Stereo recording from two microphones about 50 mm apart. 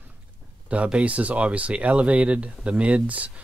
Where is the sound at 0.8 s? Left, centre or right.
Right.